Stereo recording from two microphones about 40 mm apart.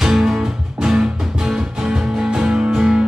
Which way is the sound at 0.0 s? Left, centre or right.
Centre.